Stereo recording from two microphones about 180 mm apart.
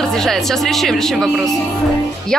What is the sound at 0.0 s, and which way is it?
A woman's voice, 5° left (ahead or behind).